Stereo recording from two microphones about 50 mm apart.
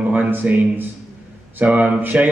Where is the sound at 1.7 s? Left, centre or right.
Right.